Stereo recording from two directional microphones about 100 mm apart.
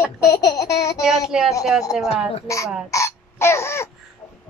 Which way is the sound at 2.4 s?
30° left (ahead or behind).